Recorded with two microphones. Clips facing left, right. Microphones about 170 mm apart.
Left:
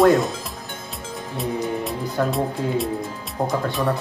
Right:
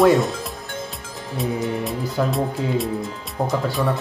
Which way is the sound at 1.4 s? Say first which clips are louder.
Right 1 dB; centre (ahead or behind).